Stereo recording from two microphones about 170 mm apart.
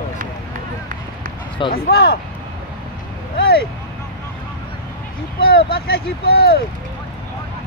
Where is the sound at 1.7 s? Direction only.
65° left (ahead or behind).